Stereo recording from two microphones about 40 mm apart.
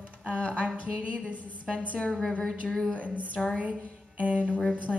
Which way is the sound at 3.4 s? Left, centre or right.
Centre.